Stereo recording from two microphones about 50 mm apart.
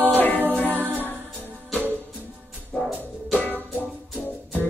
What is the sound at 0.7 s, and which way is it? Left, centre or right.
Music, right.